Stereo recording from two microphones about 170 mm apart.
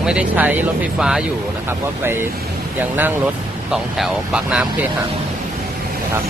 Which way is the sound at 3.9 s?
5° right (ahead or behind).